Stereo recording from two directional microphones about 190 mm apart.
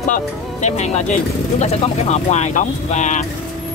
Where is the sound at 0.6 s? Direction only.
35° left (ahead or behind).